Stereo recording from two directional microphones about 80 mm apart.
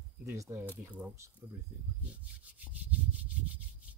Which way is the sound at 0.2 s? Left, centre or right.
Right.